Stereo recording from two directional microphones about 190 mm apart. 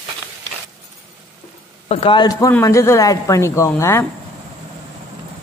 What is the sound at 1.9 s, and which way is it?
A man's voice, 30° left (ahead or behind).